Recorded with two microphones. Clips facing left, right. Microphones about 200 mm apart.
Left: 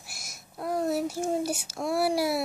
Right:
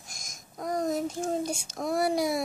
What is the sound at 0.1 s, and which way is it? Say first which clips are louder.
A child's voice: left 1 dB; 5° left (ahead or behind).